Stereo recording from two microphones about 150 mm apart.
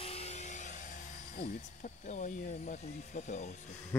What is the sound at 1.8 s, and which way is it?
Speech, 55° left (ahead or behind).